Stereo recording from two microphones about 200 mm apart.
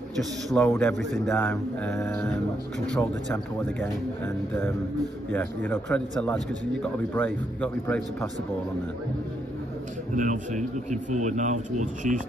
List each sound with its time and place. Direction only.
0.2 s a man's voice: centre (ahead or behind)
5.3 s a man's voice: 10° left (ahead or behind)
10.1 s speech: 40° right (ahead or behind)